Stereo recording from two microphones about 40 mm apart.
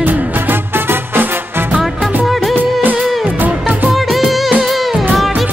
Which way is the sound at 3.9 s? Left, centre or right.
Centre.